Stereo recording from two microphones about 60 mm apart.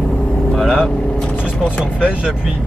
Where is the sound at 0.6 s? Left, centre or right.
Centre.